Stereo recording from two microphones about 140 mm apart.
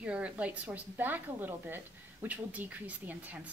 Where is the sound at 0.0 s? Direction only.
10° right (ahead or behind).